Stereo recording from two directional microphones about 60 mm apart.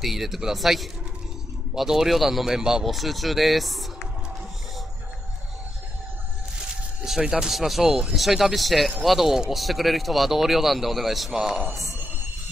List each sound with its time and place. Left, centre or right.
0.0 s speech: centre
6.7 s speech: centre